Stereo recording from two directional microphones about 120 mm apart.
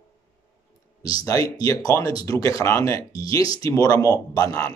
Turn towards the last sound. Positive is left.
turn(degrees=30)  # may be behind; listen again after turning